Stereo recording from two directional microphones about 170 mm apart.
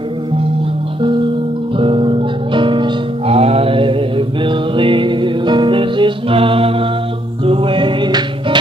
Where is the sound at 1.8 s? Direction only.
30° right (ahead or behind).